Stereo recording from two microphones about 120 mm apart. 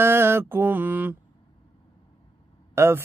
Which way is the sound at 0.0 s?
20° right (ahead or behind).